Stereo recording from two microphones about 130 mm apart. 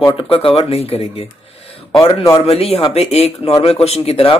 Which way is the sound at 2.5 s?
50° left (ahead or behind).